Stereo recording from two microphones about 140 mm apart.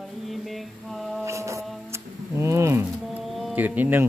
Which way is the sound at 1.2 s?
20° right (ahead or behind).